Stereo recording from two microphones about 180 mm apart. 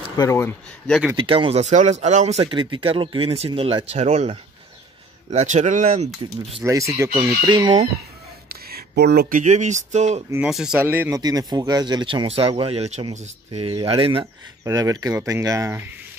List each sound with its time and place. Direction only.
0.2 s speech: 15° left (ahead or behind)
1.1 s speech: 30° right (ahead or behind); by 6.0 s 45° right (ahead or behind)
6.6 s speech: 15° right (ahead or behind)
8.5 s a sound: 60° right (ahead or behind)
9.4 s speech: 45° right (ahead or behind)
10.3 s speech: 5° right (ahead or behind)
11.1 s speech: 20° right (ahead or behind); by 13.3 s 40° right (ahead or behind)
13.5 s speech: 25° right (ahead or behind)
14.2 s speech: 20° right (ahead or behind)